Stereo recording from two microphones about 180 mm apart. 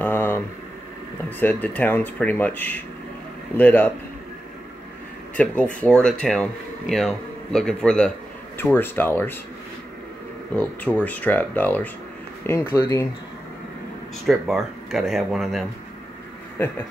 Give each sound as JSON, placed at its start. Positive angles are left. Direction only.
{"t": 0.0, "sound": "a sound", "side_deg": 10}
{"t": 1.4, "sound": "speech", "side_deg": 10}
{"t": 5.3, "sound": "speech", "side_deg": 10}
{"t": 10.5, "sound": "speech", "side_deg": 10}
{"t": 14.2, "sound": "speech", "side_deg": 0}